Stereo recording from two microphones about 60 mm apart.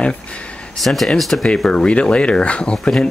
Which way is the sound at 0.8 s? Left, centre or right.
Centre.